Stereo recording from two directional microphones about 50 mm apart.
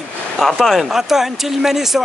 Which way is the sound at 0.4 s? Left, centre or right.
Centre.